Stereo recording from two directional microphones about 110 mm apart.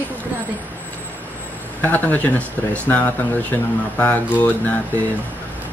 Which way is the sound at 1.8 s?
15° left (ahead or behind).